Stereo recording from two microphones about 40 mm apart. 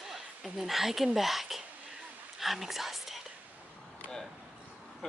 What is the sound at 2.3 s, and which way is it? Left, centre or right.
Whispering, centre.